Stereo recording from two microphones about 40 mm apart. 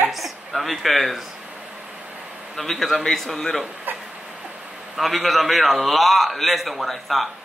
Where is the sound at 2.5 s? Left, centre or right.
Centre.